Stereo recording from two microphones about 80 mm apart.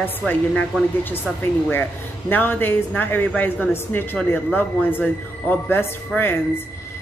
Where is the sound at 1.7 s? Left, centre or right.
Left.